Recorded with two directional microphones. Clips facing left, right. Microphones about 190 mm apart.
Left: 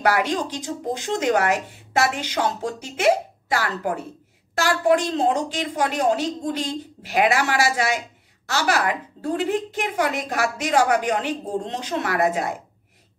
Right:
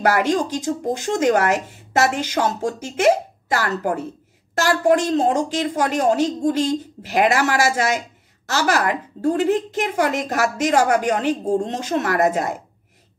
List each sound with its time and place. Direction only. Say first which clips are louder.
0.0 s a woman's voice: right 3 dB; 45° right (ahead or behind)